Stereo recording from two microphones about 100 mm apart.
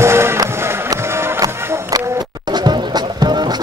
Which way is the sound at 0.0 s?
25° right (ahead or behind).